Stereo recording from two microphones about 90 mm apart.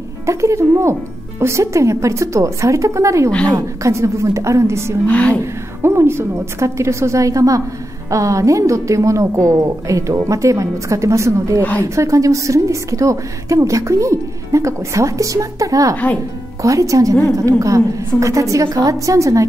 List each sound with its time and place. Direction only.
0.3 s a woman's voice: 35° right (ahead or behind)
3.3 s a woman's voice: 15° left (ahead or behind)
3.5 s a woman's voice: 35° right (ahead or behind)
5.0 s a woman's voice: 15° left (ahead or behind)
5.4 s a woman's voice: 30° right (ahead or behind)